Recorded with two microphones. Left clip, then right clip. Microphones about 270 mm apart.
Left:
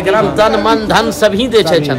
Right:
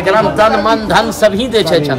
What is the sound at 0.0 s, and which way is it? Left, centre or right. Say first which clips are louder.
A man's voice: right 1 dB; centre.